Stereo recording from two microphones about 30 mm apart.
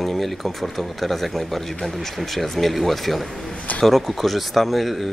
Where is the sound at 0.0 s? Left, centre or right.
Centre.